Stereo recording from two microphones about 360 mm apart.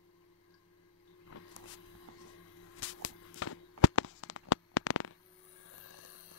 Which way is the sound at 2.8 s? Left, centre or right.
Left.